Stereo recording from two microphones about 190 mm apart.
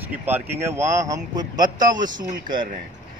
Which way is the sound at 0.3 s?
15° right (ahead or behind).